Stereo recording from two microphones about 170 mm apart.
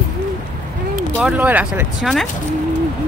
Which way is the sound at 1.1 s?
5° right (ahead or behind).